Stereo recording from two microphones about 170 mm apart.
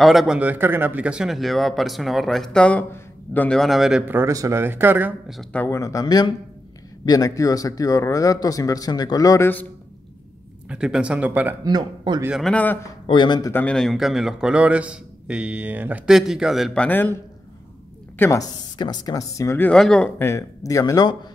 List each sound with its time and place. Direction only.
0.0 s a man's voice: centre (ahead or behind)
4.2 s speech: 20° right (ahead or behind)
5.3 s a man's voice: 5° left (ahead or behind)
10.7 s speech: 5° right (ahead or behind)
11.6 s speech: 25° right (ahead or behind)
12.4 s a man's voice: 5° left (ahead or behind)
13.0 s speech: 30° left (ahead or behind)
13.5 s a man's voice: 10° left (ahead or behind)
18.2 s speech: 20° left (ahead or behind)